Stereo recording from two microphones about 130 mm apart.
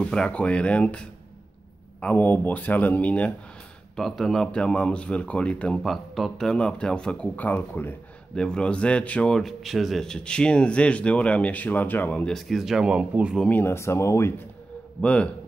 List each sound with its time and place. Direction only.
0.0 s speech: 5° left (ahead or behind); by 13.4 s 10° right (ahead or behind)
13.4 s speech: 15° left (ahead or behind)
15.0 s speech: 10° left (ahead or behind)